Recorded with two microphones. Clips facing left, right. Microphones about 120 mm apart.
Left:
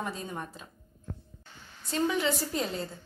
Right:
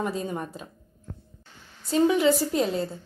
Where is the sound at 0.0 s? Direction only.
10° right (ahead or behind).